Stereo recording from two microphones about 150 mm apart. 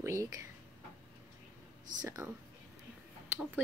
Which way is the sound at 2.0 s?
20° right (ahead or behind).